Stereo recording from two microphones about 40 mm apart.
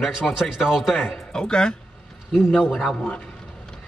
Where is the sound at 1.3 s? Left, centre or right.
Left.